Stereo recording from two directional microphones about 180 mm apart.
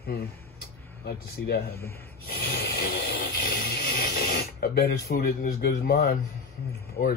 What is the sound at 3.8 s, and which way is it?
Speech, 50° left (ahead or behind).